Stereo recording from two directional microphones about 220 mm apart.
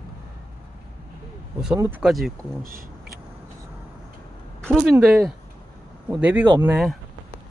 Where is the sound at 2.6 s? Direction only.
40° right (ahead or behind).